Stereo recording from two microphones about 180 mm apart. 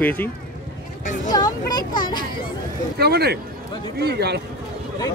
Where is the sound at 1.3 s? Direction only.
20° left (ahead or behind).